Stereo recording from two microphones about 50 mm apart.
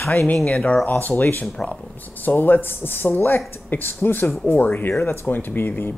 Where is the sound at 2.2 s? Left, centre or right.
Left.